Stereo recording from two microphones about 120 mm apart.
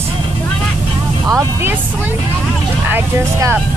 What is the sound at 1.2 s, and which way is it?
Speech, 25° right (ahead or behind).